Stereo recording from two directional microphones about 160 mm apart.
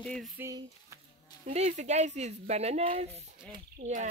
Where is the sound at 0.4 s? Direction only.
20° right (ahead or behind).